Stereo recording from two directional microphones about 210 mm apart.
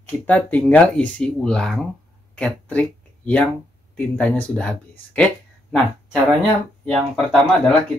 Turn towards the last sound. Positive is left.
turn(degrees=5)  # may be behind; listen again after turning